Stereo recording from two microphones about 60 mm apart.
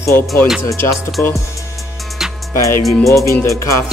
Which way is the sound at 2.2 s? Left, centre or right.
Centre.